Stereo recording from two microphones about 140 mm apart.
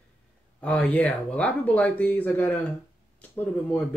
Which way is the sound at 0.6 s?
10° left (ahead or behind).